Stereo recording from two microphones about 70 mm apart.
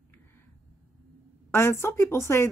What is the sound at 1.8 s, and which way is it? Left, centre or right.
Speech, left.